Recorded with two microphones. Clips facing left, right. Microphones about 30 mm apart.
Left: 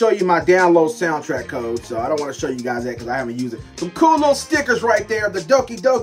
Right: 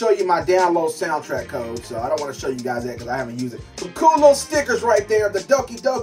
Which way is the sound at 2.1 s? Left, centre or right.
Centre.